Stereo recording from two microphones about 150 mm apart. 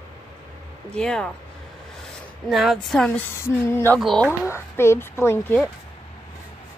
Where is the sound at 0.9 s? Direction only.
5° left (ahead or behind).